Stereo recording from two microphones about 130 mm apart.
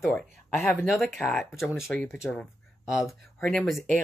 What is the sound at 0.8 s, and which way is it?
Speech, centre (ahead or behind).